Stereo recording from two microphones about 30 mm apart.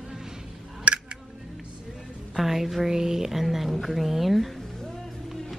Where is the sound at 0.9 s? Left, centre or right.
Right.